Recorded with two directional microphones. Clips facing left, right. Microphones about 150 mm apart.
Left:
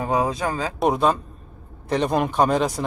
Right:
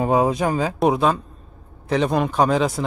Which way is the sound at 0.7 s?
Centre (ahead or behind).